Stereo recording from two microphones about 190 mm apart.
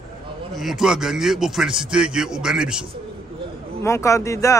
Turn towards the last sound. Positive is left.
turn(degrees=15)  # may be behind; listen again after turning